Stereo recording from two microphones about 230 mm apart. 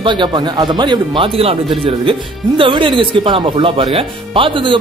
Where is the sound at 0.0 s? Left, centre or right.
Centre.